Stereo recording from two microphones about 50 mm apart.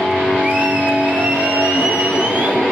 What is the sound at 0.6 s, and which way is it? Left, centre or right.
Music, right.